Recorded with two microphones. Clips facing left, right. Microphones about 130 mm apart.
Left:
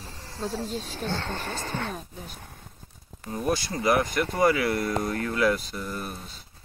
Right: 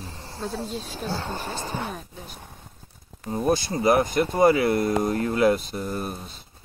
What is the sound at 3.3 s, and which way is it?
Speech, 25° right (ahead or behind).